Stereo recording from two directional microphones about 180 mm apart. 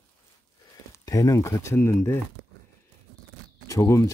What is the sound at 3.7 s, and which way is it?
Speech, 15° left (ahead or behind).